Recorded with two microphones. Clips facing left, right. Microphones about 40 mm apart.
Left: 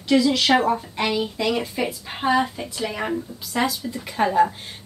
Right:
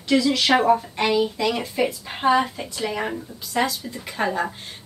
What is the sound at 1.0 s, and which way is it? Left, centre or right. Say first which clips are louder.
A woman's voice: right 2 dB; centre.